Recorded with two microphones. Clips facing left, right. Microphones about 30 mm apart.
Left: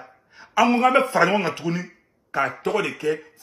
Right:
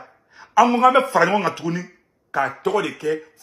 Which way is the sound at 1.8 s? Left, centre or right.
Left.